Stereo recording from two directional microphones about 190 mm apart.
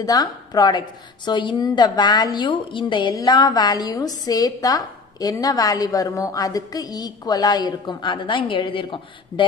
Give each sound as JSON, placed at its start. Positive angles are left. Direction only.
{"t": 0.0, "sound": "a woman's voice", "side_deg": 20}